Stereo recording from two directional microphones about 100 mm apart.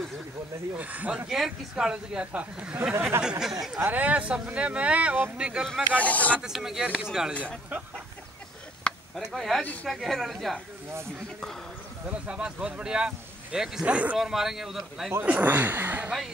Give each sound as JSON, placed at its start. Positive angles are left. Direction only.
{"t": 0.7, "sound": "speech", "side_deg": -15}
{"t": 3.8, "sound": "speech", "side_deg": -15}
{"t": 5.9, "sound": "speech", "side_deg": 15}
{"t": 6.4, "sound": "speech", "side_deg": -5}
{"t": 7.7, "sound": "chicken", "side_deg": -20}
{"t": 8.8, "sound": "a sound", "side_deg": 10}
{"t": 9.3, "sound": "speech", "side_deg": 0}
{"t": 12.1, "sound": "speech", "side_deg": -10}
{"t": 15.1, "sound": "speech", "side_deg": -15}